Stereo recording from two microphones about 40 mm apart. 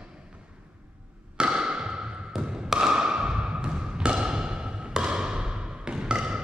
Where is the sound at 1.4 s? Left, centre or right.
Centre.